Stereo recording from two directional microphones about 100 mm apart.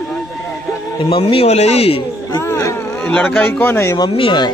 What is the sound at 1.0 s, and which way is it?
A man's voice, 70° left (ahead or behind).